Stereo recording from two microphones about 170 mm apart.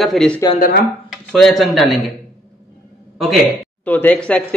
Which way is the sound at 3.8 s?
10° left (ahead or behind).